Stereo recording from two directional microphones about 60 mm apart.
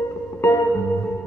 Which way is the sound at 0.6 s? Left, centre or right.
Left.